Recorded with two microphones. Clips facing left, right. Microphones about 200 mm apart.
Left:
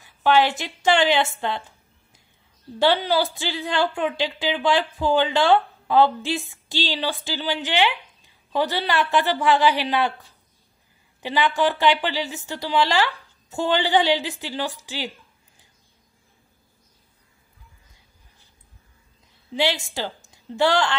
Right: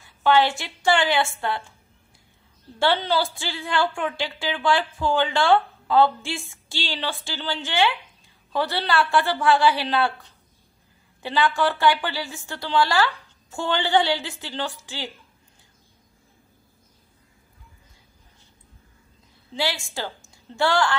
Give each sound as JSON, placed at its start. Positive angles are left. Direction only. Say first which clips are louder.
{"t": 0.0, "sound": "a woman's voice", "louder": "left 1 dB", "side_deg": 15}
{"t": 2.8, "sound": "a woman's voice", "louder": "left 2 dB", "side_deg": 15}
{"t": 11.2, "sound": "a woman's voice", "louder": "left 1 dB", "side_deg": 20}
{"t": 19.5, "sound": "a woman's voice", "louder": "left 4 dB", "side_deg": 20}